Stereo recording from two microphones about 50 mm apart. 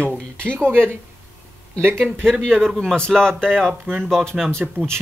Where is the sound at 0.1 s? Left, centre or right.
Left.